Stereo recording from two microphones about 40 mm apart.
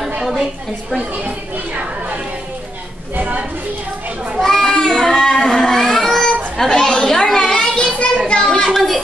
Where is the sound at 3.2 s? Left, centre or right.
Right.